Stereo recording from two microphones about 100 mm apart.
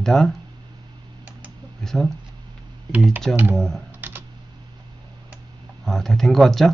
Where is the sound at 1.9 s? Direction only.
5° left (ahead or behind).